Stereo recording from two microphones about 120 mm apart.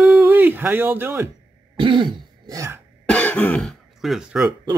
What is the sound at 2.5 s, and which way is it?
Speech, 25° right (ahead or behind).